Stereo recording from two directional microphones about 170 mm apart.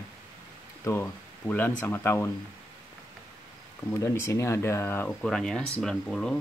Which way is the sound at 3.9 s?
20° left (ahead or behind).